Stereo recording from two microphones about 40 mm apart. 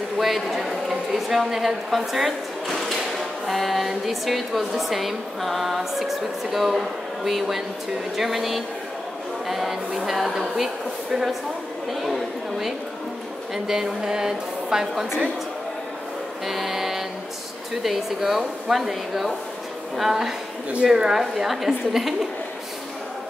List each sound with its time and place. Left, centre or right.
0.2 s a woman's voice: centre
16.4 s music: centre
17.8 s a woman's voice: centre